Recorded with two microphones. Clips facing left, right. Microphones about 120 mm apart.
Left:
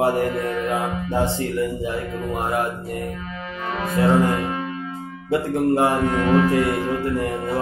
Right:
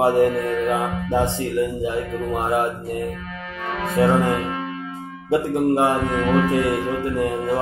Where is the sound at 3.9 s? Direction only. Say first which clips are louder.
Even; 25° right (ahead or behind).